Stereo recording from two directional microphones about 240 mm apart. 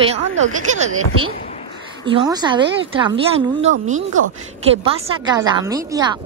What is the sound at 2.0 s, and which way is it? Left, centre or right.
Speech, centre.